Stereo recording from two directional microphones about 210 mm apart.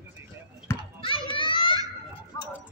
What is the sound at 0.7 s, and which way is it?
Children playing, 10° left (ahead or behind).